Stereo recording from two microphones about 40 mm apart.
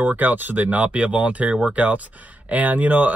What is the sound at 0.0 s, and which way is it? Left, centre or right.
Speech, right.